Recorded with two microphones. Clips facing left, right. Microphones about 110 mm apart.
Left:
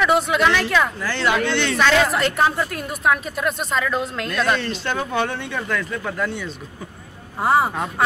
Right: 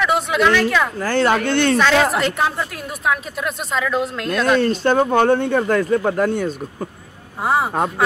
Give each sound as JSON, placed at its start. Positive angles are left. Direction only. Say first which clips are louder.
{"t": 0.0, "sound": "a woman's voice", "louder": "even", "side_deg": 0}
{"t": 0.9, "sound": "speech", "louder": "right 4 dB", "side_deg": -45}
{"t": 1.8, "sound": "a woman's voice", "louder": "right 2 dB", "side_deg": 0}
{"t": 4.6, "sound": "speech", "louder": "right 9 dB", "side_deg": -45}
{"t": 7.4, "sound": "a woman's voice", "louder": "left 1 dB", "side_deg": 0}